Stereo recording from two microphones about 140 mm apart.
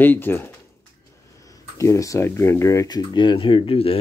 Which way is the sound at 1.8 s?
20° left (ahead or behind).